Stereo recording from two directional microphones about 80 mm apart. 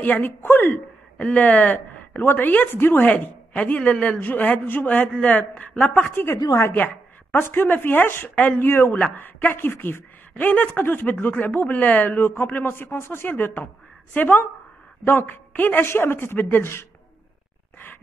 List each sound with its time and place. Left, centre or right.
0.0 s a woman's voice: left
1.1 s a woman's voice: centre